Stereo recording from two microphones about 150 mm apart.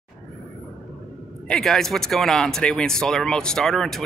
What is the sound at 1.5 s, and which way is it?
Speech, 5° left (ahead or behind).